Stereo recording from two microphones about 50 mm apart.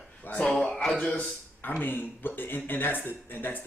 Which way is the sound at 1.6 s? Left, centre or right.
Left.